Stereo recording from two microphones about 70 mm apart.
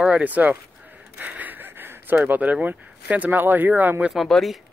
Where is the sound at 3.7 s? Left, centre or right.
Right.